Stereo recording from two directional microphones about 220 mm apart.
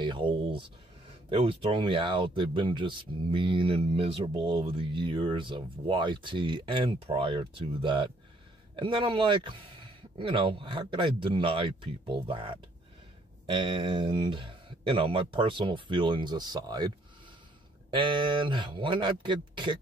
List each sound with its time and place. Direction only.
0.0 s speech: 20° right (ahead or behind)
13.6 s speech: 25° right (ahead or behind)
17.9 s speech: 20° right (ahead or behind)